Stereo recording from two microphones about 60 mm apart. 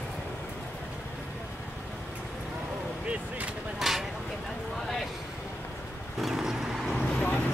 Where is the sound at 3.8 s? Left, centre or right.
Centre.